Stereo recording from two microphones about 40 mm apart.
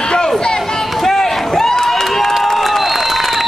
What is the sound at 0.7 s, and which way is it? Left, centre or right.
Crowd, centre.